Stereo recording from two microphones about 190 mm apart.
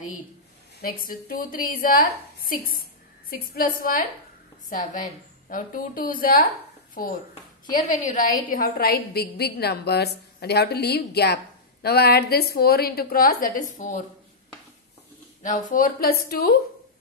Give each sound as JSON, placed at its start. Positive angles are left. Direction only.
{"t": 0.7, "sound": "a woman's voice", "side_deg": 50}
{"t": 5.5, "sound": "a woman's voice", "side_deg": 45}
{"t": 15.4, "sound": "a woman's voice", "side_deg": 45}